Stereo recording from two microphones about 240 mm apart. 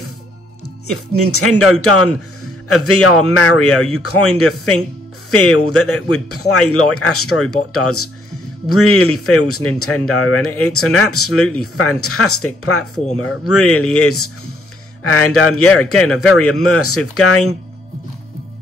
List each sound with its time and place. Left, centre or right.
0.8 s a man's voice: left